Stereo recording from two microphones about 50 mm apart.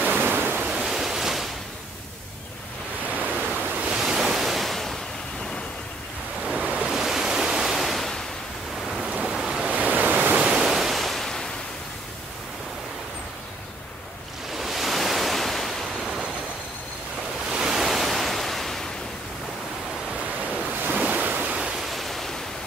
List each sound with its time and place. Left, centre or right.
0.0 s waves: right
0.7 s waves: centre
3.2 s waves: right
3.9 s waves: centre
6.4 s waves: right
6.9 s waves: centre
9.2 s waves: centre
9.7 s waves: right
10.4 s waves: centre
14.6 s waves: centre
17.5 s waves: centre
20.8 s waves: right
21.9 s waves: centre